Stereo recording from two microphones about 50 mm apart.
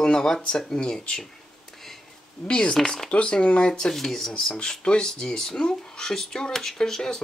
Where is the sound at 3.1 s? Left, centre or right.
Left.